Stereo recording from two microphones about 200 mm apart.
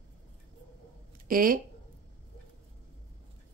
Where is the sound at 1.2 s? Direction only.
45° right (ahead or behind).